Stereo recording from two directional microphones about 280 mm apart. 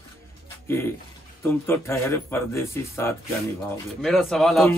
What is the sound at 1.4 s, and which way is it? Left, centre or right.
Speech, centre.